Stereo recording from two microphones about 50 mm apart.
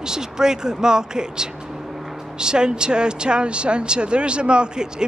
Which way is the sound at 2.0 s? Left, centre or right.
Centre.